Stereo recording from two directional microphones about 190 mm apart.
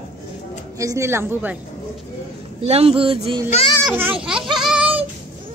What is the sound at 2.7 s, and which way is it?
Speech, 30° right (ahead or behind).